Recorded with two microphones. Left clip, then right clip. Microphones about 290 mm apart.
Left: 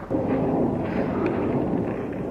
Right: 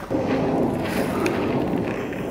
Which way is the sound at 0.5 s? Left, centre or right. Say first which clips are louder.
Right 1 dB; left.